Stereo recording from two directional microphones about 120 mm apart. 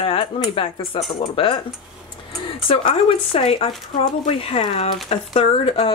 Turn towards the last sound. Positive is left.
turn(degrees=55)  # may be behind; listen again after turning